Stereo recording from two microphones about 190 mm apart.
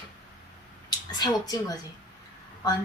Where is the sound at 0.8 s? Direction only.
20° left (ahead or behind).